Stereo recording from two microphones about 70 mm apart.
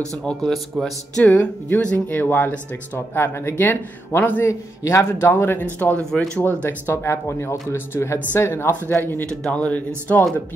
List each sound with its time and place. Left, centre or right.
0.2 s speech: centre
1.2 s a man's voice: left
5.9 s speech: centre
6.4 s a man's voice: left
9.2 s speech: centre